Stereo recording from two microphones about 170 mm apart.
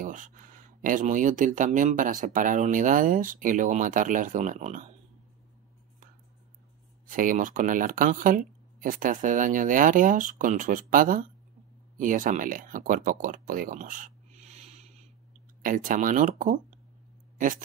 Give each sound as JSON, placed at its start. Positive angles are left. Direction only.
{"t": 0.0, "sound": "speech", "side_deg": -50}
{"t": 7.1, "sound": "speech", "side_deg": -50}
{"t": 15.6, "sound": "speech", "side_deg": -50}